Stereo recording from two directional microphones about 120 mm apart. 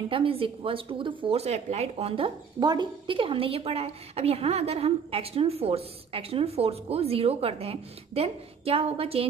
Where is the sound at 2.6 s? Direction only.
40° right (ahead or behind).